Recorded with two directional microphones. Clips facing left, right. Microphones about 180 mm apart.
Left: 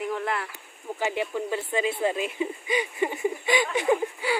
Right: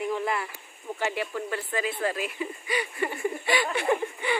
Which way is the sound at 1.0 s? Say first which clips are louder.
Left 2 dB; 20° left (ahead or behind).